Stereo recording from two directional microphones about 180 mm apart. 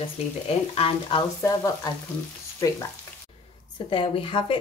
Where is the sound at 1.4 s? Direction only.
15° left (ahead or behind).